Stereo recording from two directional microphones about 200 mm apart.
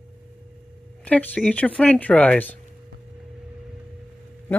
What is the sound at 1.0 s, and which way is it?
Speech, 10° left (ahead or behind).